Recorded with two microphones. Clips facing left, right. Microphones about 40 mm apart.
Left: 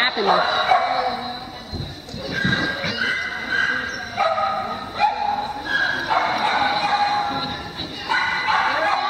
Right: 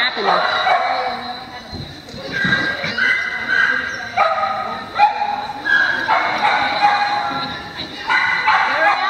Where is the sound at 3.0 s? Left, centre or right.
Centre.